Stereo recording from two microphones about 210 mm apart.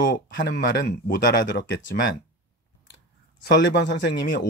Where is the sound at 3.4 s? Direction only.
55° left (ahead or behind).